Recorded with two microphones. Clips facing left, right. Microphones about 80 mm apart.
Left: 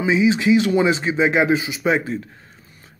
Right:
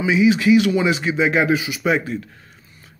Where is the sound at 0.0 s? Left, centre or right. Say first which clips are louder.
Right 1 dB; left.